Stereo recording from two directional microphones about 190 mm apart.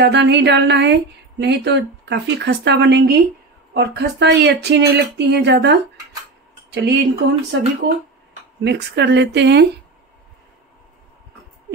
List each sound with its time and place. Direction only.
0.0 s speech: 65° right (ahead or behind)
8.6 s speech: 65° right (ahead or behind)